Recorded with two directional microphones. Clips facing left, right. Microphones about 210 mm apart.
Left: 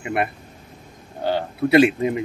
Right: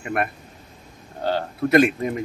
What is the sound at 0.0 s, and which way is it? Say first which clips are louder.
Speech: left 1 dB; 15° left (ahead or behind).